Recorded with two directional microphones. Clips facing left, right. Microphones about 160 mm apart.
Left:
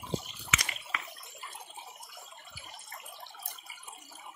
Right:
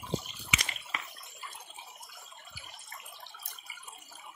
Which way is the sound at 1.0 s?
Centre (ahead or behind).